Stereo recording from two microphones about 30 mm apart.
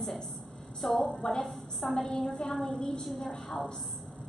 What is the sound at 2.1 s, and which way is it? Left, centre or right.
A woman's voice, left.